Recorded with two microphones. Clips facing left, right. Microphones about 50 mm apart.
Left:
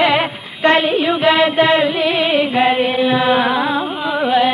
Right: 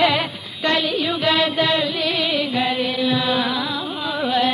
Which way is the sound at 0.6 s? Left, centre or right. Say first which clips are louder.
Left 7 dB; left.